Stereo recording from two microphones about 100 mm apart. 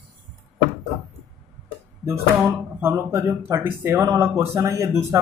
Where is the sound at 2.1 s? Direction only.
25° right (ahead or behind).